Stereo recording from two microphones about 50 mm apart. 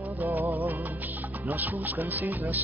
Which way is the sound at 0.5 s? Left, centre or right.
Right.